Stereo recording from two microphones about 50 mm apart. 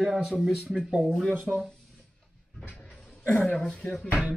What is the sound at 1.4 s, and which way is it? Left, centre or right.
Speech, centre.